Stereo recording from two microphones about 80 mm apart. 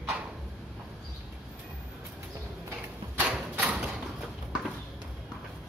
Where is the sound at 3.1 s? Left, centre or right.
Centre.